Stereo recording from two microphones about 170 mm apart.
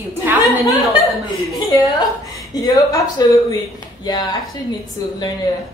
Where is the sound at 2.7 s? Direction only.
20° left (ahead or behind).